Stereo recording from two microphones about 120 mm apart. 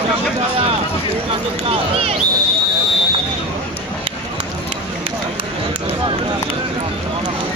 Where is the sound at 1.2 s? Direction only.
55° right (ahead or behind).